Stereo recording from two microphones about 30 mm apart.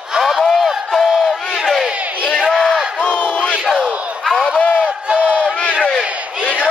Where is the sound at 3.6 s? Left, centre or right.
Centre.